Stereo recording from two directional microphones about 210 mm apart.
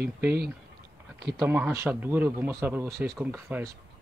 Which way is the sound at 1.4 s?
10° right (ahead or behind).